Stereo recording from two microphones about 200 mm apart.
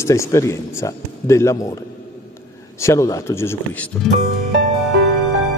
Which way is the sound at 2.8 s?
15° left (ahead or behind).